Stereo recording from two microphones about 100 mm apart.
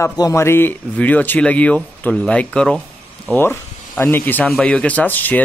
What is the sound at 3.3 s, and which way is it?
A man's voice, 25° left (ahead or behind).